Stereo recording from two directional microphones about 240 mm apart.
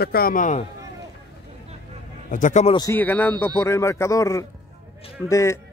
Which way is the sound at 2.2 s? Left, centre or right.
Left.